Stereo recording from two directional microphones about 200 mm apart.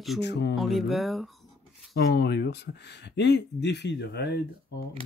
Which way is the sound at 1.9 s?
55° left (ahead or behind).